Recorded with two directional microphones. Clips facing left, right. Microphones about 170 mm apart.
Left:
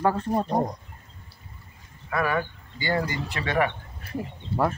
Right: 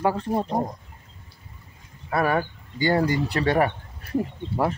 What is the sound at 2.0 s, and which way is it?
Speech, 35° right (ahead or behind).